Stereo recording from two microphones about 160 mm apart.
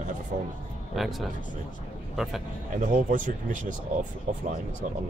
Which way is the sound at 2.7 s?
55° right (ahead or behind).